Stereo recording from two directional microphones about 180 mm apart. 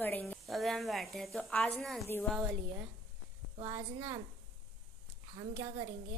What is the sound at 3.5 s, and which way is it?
Speech, 15° right (ahead or behind).